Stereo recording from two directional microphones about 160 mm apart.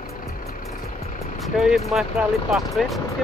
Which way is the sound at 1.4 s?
Centre (ahead or behind).